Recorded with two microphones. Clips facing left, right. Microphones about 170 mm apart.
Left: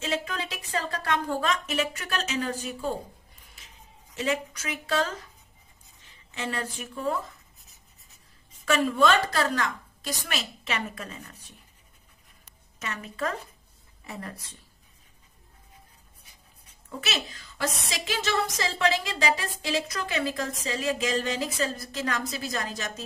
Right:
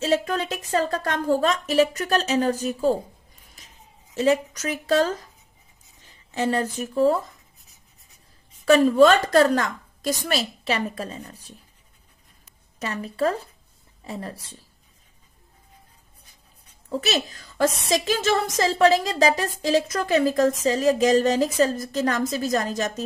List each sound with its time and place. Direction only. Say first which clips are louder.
0.0 s a woman's voice: right 8 dB; 40° right (ahead or behind)
3.6 s a sound: right 3 dB; 40° right (ahead or behind)
4.2 s a woman's voice: right 8 dB; 40° right (ahead or behind)
7.6 s writing: right 1 dB; centre (ahead or behind)
8.6 s a woman's voice: right 8 dB; 35° right (ahead or behind)
12.7 s a woman's voice: right 7 dB; 35° right (ahead or behind)
16.9 s a woman's voice: right 8 dB; 40° right (ahead or behind)